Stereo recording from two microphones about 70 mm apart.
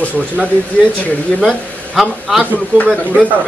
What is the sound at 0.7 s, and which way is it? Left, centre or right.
Speech, centre.